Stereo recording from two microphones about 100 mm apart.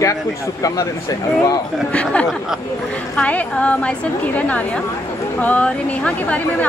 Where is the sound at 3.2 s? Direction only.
15° left (ahead or behind).